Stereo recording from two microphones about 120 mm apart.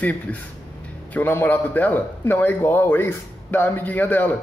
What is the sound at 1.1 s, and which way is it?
A man's voice, 15° left (ahead or behind).